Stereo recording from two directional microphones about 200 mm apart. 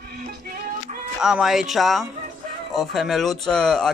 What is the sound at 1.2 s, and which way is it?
Speech, 5° right (ahead or behind).